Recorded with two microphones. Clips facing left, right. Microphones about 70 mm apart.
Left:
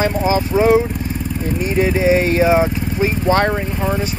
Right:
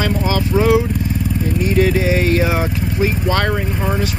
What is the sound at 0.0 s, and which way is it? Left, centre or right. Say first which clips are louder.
Vehicle: left 2 dB; left.